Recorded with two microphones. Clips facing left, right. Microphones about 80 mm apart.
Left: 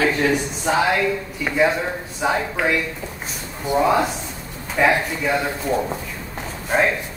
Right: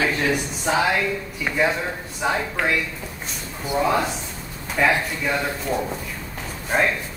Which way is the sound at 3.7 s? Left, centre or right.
Centre.